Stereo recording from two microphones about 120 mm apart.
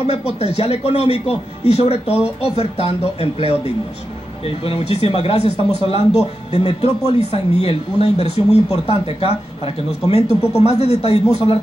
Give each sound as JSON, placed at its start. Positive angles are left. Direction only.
{"t": 0.4, "sound": "a man's voice", "side_deg": 60}